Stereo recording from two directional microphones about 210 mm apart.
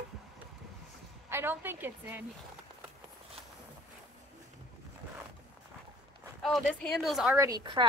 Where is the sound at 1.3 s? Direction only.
10° right (ahead or behind).